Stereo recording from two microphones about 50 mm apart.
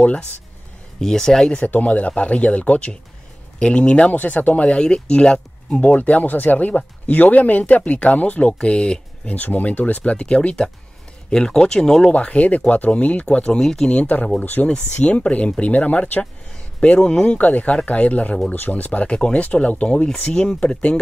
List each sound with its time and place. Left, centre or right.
0.0 s speech: left
1.0 s speech: centre
1.7 s speech: left
4.6 s speech: centre
8.5 s speech: centre
9.3 s speech: left; by 12.1 s centre
12.1 s speech: left
13.6 s speech: centre
13.8 s speech: left
17.4 s speech: left